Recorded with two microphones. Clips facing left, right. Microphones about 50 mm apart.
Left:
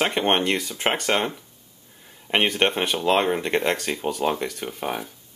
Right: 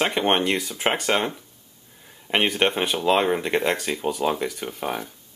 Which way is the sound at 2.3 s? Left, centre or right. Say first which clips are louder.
Even; centre.